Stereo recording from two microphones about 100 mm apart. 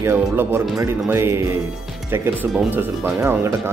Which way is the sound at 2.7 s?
20° right (ahead or behind).